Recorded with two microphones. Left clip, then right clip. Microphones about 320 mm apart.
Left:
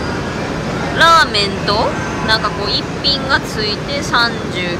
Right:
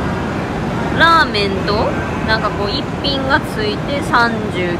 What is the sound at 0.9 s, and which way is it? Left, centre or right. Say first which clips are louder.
Speech: left 2 dB; centre.